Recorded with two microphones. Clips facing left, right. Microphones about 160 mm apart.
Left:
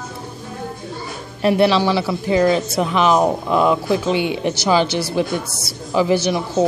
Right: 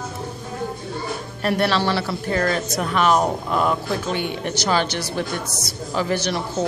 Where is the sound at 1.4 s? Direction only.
10° left (ahead or behind).